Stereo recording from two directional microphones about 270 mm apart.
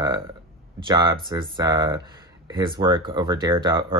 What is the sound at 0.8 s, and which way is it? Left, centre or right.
Speech, centre.